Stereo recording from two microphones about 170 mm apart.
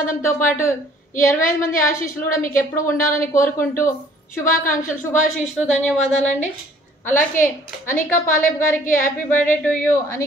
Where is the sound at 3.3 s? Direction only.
15° left (ahead or behind).